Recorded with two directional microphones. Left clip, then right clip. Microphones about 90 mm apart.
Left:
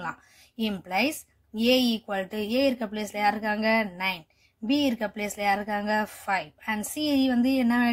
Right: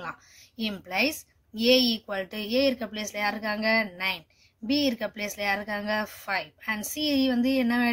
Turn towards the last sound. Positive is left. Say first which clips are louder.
# left 1 dB
turn(degrees=20)  # may be behind; listen again after turning